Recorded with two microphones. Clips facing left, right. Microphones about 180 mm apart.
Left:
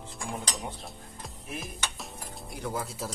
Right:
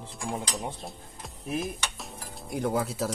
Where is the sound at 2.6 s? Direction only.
60° right (ahead or behind).